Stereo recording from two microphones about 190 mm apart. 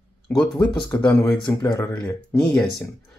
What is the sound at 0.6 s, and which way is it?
Speech, 15° left (ahead or behind).